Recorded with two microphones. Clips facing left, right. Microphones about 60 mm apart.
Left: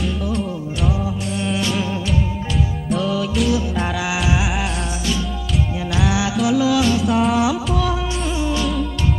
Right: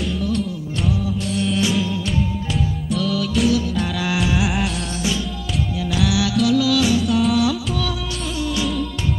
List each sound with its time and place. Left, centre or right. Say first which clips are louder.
0.2 s music: even; centre
3.0 s music: right 1 dB; centre
6.0 s music: right 1 dB; left
7.0 s music: left 1 dB; centre
7.3 s music: left 1 dB; left